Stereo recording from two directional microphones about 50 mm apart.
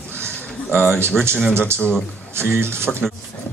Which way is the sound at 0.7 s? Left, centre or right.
Right.